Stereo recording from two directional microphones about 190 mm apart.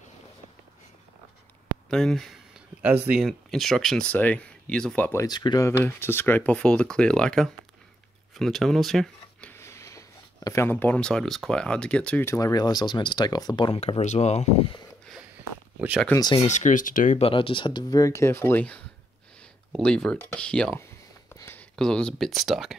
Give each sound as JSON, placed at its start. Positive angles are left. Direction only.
{"t": 1.9, "sound": "speech", "side_deg": 0}
{"t": 5.2, "sound": "speech", "side_deg": 20}
{"t": 16.4, "sound": "speech", "side_deg": 40}
{"t": 17.2, "sound": "speech", "side_deg": 25}
{"t": 19.8, "sound": "speech", "side_deg": 5}